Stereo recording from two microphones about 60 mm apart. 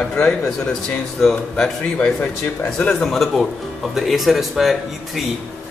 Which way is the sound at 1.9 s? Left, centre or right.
Left.